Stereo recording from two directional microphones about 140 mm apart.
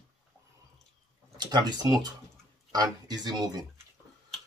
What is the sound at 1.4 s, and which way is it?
Speech, 30° right (ahead or behind).